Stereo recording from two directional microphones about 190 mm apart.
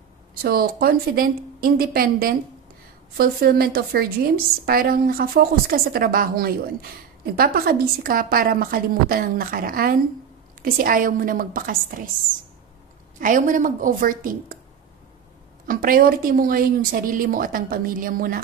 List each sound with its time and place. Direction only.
0.4 s a woman's voice: 50° right (ahead or behind)
13.2 s a woman's voice: 45° right (ahead or behind)
15.6 s a woman's voice: 50° right (ahead or behind)